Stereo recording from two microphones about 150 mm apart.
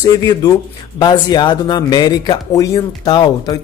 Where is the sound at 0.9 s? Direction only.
30° left (ahead or behind).